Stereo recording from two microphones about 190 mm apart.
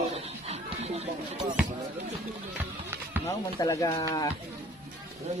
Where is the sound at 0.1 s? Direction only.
35° right (ahead or behind).